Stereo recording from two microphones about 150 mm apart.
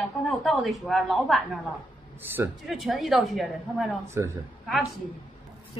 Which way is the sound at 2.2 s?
15° right (ahead or behind).